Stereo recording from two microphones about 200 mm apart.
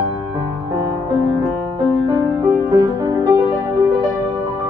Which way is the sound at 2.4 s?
20° right (ahead or behind).